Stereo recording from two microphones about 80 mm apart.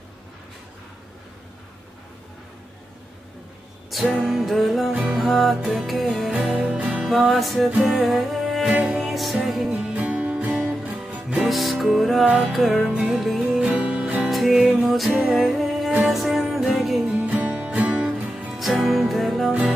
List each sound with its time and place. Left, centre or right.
4.2 s music: centre
6.3 s music: centre
7.1 s music: centre
9.7 s music: centre
11.4 s music: centre
12.8 s music: centre
14.3 s music: centre
14.6 s music: centre
14.9 s music: centre
17.0 s music: centre
18.6 s music: centre